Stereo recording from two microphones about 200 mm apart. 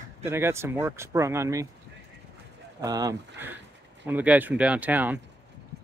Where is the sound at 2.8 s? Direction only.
20° right (ahead or behind).